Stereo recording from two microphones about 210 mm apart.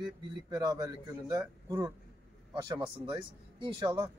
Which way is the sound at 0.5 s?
15° right (ahead or behind).